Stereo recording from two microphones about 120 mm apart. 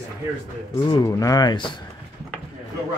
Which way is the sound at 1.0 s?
30° left (ahead or behind).